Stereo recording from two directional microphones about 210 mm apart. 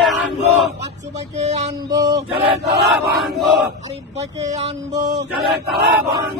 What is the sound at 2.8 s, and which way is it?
Chant, 50° right (ahead or behind).